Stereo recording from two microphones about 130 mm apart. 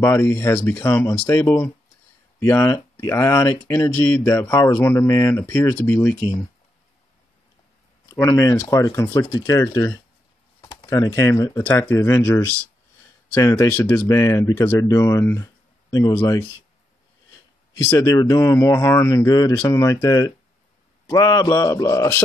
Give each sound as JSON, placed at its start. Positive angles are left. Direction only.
{"t": 0.0, "sound": "speech", "side_deg": 25}
{"t": 8.1, "sound": "speech", "side_deg": 25}
{"t": 17.8, "sound": "speech", "side_deg": 25}